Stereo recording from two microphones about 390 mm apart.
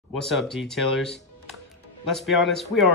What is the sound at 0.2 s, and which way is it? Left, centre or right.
Speech, centre.